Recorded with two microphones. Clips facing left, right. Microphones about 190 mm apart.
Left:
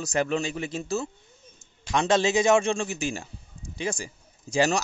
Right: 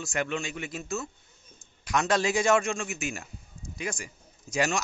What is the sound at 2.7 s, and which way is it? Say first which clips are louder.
Speech: left 5 dB; 30° left (ahead or behind).